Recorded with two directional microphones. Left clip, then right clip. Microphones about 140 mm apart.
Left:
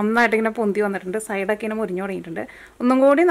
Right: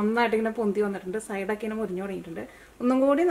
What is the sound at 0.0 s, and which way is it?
Speech, 30° left (ahead or behind).